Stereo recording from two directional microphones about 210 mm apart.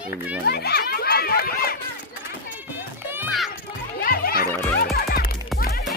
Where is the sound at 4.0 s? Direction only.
45° left (ahead or behind).